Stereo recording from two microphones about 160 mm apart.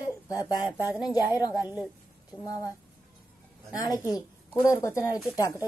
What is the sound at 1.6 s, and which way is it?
Speech, 5° right (ahead or behind).